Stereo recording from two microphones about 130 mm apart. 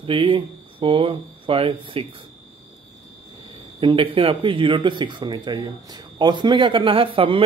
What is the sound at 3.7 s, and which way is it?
Speech, 40° right (ahead or behind).